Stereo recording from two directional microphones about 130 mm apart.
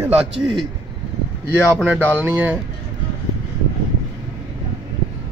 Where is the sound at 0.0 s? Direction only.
5° right (ahead or behind).